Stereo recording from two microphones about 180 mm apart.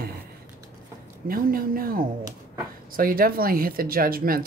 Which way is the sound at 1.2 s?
55° right (ahead or behind).